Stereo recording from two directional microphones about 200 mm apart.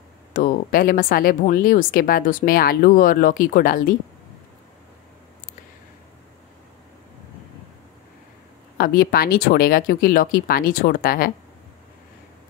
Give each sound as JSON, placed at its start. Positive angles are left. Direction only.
{"t": 0.3, "sound": "speech", "side_deg": 45}
{"t": 8.7, "sound": "speech", "side_deg": 50}